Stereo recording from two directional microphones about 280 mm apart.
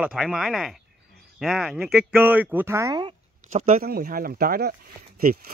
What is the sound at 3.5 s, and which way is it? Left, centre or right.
Speech, right.